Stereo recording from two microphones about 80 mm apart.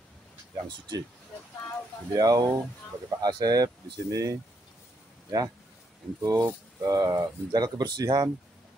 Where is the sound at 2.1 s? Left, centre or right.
Right.